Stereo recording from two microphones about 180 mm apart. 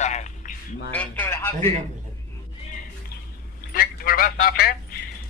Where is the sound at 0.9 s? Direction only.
10° left (ahead or behind).